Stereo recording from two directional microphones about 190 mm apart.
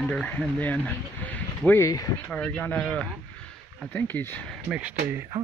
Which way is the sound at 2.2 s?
10° left (ahead or behind).